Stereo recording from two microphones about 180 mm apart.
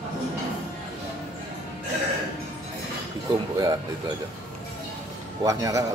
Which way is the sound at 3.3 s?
25° right (ahead or behind).